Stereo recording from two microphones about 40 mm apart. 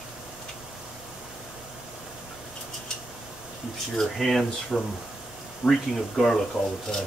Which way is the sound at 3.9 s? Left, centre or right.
Centre.